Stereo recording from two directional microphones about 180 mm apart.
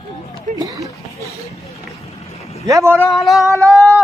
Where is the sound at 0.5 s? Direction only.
20° right (ahead or behind).